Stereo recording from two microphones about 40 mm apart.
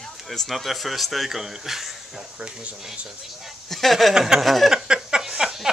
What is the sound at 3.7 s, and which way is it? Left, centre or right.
Speech, centre.